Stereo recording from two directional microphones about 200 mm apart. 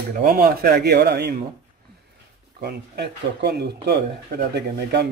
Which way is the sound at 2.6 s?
55° right (ahead or behind).